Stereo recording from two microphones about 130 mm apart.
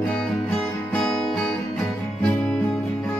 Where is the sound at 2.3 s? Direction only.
10° left (ahead or behind).